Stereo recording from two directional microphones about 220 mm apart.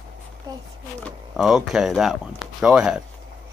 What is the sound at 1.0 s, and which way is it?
Speech, centre (ahead or behind).